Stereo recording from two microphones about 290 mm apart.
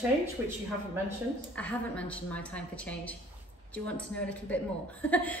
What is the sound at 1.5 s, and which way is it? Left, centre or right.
A woman's voice, centre.